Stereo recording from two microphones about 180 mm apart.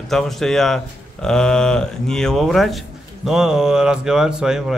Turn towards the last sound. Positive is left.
turn(degrees=-5)  # may be behind; listen again after turning